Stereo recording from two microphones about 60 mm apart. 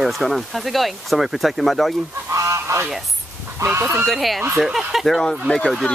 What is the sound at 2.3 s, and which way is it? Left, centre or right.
Goose, right.